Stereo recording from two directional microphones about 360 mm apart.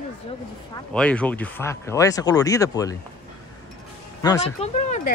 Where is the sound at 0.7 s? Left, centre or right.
Centre.